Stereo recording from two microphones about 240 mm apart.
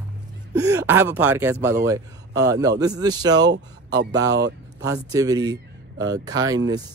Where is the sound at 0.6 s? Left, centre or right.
Centre.